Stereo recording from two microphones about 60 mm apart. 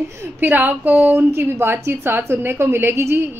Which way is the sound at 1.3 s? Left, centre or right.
Right.